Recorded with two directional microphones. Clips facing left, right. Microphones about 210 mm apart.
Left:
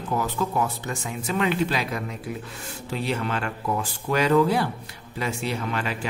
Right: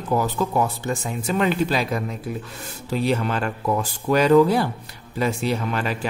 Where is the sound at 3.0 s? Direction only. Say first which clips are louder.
Right 4 dB; 40° right (ahead or behind).